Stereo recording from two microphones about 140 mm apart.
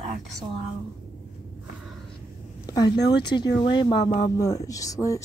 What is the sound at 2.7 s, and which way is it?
Speech, 30° left (ahead or behind).